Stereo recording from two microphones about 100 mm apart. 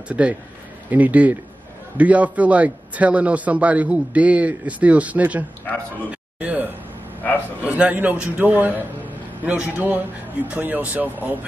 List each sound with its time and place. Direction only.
0.1 s a man's voice: 15° right (ahead or behind)
6.4 s a sound: 20° right (ahead or behind)
7.6 s a man's voice: 15° right (ahead or behind)